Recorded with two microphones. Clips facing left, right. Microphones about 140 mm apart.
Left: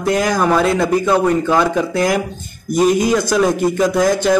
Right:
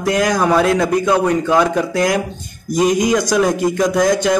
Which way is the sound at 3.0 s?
15° right (ahead or behind).